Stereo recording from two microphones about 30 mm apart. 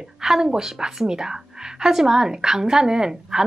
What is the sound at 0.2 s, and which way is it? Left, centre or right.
A woman's voice, right.